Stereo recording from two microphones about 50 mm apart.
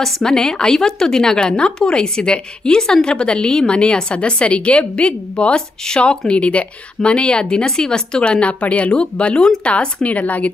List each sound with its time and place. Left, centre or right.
0.0 s a woman's voice: centre; by 10.5 s left